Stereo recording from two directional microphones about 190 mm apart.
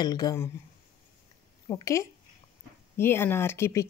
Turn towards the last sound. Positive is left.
turn(degrees=15)  # may be behind; listen again after turning